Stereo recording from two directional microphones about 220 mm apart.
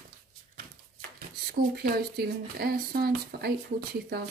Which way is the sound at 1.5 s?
45° right (ahead or behind).